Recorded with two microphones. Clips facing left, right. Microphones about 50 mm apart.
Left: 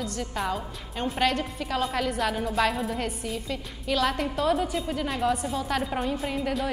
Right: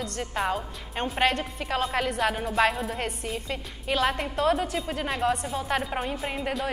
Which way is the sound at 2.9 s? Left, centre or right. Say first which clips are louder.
Left 1 dB; right.